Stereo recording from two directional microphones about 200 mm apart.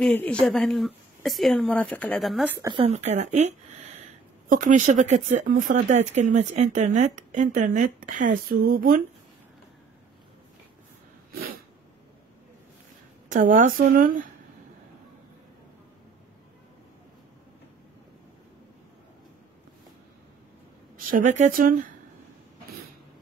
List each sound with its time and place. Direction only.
0.0 s speech: 5° left (ahead or behind)
2.6 s speech: 25° right (ahead or behind)
2.9 s speech: 35° right (ahead or behind)
11.3 s sneeze: 45° right (ahead or behind)
13.3 s a woman's voice: 40° right (ahead or behind)
21.1 s a woman's voice: 40° right (ahead or behind)